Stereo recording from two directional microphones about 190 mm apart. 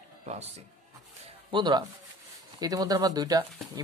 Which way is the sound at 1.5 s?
25° right (ahead or behind).